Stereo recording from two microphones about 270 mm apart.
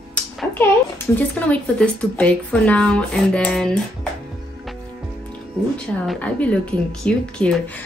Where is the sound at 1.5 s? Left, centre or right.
Centre.